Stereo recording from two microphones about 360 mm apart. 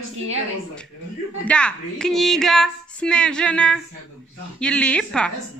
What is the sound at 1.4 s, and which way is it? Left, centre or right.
A woman's voice, centre.